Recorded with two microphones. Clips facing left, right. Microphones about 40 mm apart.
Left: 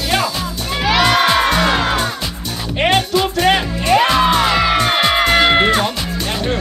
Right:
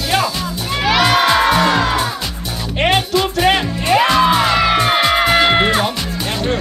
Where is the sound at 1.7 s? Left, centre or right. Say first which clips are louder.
Right 1 dB; left.